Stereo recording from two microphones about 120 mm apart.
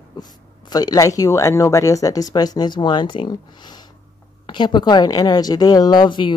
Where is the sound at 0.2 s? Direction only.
35° left (ahead or behind).